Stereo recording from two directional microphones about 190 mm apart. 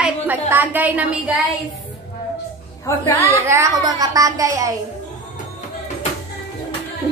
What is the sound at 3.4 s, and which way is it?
A woman's voice, 15° right (ahead or behind).